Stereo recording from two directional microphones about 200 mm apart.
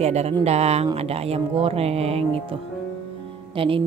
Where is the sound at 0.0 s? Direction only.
35° right (ahead or behind).